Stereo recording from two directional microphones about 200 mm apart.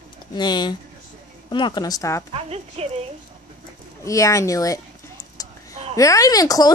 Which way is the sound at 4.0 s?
15° left (ahead or behind).